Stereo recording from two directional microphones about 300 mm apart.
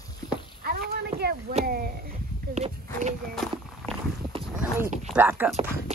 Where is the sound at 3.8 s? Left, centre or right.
Centre.